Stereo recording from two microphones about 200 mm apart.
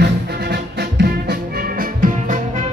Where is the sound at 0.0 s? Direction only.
55° right (ahead or behind).